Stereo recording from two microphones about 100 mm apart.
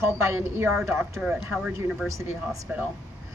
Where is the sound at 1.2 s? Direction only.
10° right (ahead or behind).